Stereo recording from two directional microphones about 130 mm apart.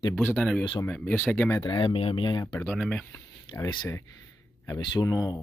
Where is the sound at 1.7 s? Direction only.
35° left (ahead or behind).